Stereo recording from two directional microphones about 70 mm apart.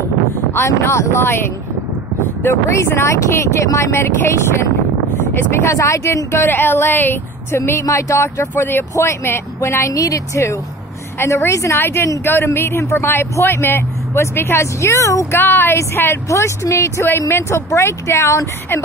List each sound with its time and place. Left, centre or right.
0.6 s speech: left
7.8 s speech: left
15.4 s speech: left